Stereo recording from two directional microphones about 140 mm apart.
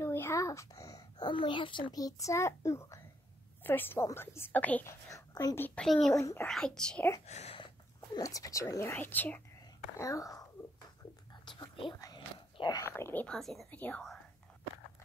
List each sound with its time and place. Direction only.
0.0 s a child's voice: 20° left (ahead or behind)
5.1 s speech: 25° left (ahead or behind)
5.6 s speech: 5° left (ahead or behind)
6.1 s speech: 20° left (ahead or behind)
6.4 s speech: 5° left (ahead or behind)
7.2 s speech: 50° left (ahead or behind)
7.5 s speech: 35° left (ahead or behind); by 9.4 s 10° left (ahead or behind)
9.9 s speech: 20° left (ahead or behind)
11.4 s whispering: 35° left (ahead or behind)
12.0 s biting: 30° left (ahead or behind)
12.8 s a woman's voice: 15° left (ahead or behind)